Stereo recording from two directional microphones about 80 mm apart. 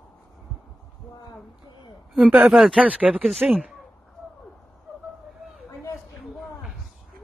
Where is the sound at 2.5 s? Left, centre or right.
Centre.